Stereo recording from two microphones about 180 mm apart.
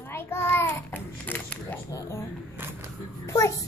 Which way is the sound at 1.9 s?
15° left (ahead or behind).